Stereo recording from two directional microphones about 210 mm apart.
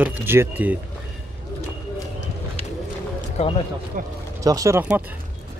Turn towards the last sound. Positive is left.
turn(degrees=-10)  # may be behind; listen again after turning